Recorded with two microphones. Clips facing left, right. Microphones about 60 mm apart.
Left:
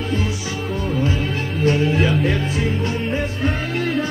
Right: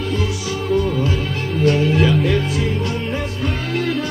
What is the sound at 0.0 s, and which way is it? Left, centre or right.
Music, left.